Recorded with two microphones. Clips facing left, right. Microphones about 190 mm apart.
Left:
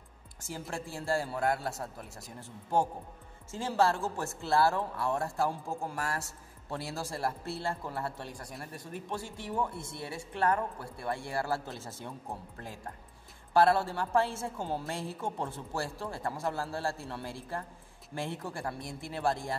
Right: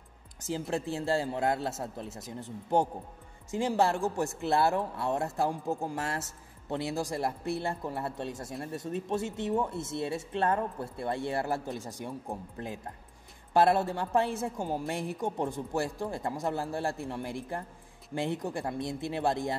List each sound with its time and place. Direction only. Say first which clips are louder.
0.4 s speech: right 7 dB; 20° right (ahead or behind)